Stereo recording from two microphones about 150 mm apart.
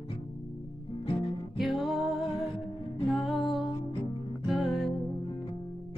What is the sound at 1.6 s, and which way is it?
Music, centre (ahead or behind).